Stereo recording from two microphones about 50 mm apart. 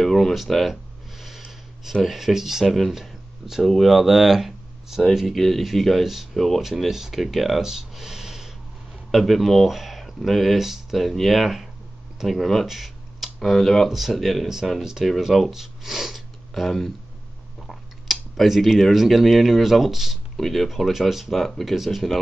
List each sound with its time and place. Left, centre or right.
0.0 s a sound: centre
0.3 s speech: centre
1.9 s speech: centre
2.6 s speech: centre
2.9 s speech: centre
6.6 s speech: centre
9.1 s speech: centre
13.8 s speech: centre
14.7 s speech: centre